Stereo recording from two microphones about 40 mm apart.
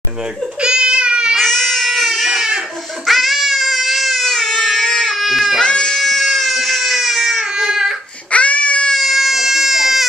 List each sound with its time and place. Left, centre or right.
0.6 s crying: right
1.3 s baby cry: centre
3.1 s baby cry: centre
4.8 s baby cry: centre
5.1 s baby cry: centre
5.6 s cat: centre
6.0 s baby cry: centre
8.3 s babbling: left
8.9 s baby cry: centre